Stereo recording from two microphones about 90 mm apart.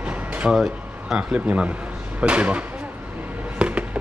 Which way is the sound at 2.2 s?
15° right (ahead or behind).